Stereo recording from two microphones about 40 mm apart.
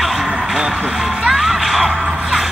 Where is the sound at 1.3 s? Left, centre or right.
Centre.